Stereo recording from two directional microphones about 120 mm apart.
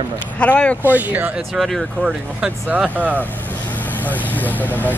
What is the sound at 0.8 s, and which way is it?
Speech, 15° right (ahead or behind).